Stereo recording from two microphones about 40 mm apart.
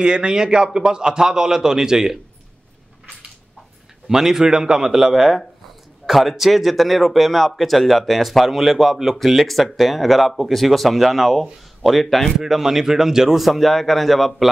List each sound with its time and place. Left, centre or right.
0.0 s a man's voice: right
4.1 s a man's voice: centre
13.4 s a man's voice: centre